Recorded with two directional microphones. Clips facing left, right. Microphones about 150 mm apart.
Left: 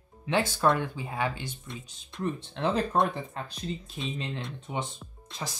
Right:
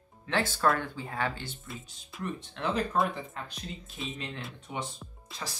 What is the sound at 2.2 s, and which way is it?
Speech, 30° left (ahead or behind).